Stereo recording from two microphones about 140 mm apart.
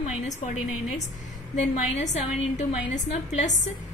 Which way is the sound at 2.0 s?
55° left (ahead or behind).